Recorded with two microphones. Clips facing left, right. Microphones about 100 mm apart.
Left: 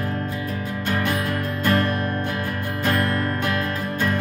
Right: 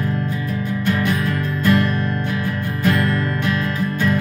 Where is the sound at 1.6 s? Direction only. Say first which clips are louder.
Right 4 dB; 45° left (ahead or behind).